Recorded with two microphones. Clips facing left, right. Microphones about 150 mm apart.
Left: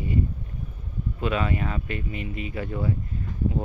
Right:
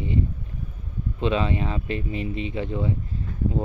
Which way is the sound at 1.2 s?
25° right (ahead or behind).